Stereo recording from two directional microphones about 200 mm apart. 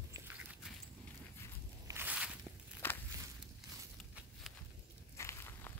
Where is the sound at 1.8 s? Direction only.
10° right (ahead or behind).